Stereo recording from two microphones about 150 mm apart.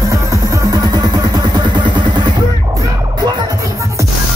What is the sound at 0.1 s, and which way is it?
Music, 20° right (ahead or behind).